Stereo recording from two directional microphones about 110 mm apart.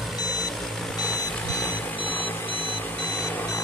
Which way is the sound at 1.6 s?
15° left (ahead or behind).